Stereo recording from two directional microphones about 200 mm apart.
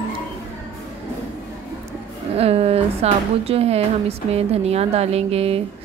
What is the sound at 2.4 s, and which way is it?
A woman's voice, 30° right (ahead or behind).